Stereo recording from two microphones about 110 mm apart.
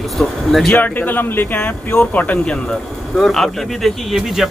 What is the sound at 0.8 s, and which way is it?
Speech, 15° left (ahead or behind).